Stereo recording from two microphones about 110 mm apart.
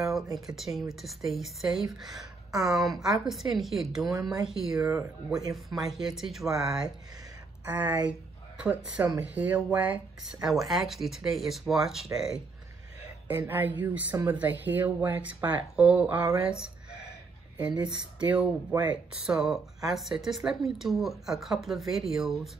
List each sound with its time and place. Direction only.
0.0 s a woman's voice: centre (ahead or behind)
7.6 s a woman's voice: 15° right (ahead or behind)
10.7 s a woman's voice: centre (ahead or behind)
13.3 s a woman's voice: 15° right (ahead or behind)
18.7 s speech: 35° right (ahead or behind)
19.2 s a woman's voice: 5° right (ahead or behind)